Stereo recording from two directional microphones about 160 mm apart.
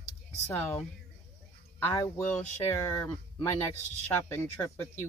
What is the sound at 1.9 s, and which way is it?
Speech, 15° left (ahead or behind).